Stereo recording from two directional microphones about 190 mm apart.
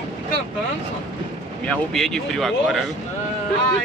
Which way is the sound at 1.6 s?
5° left (ahead or behind).